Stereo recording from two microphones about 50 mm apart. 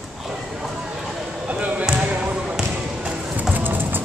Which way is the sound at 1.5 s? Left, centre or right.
Right.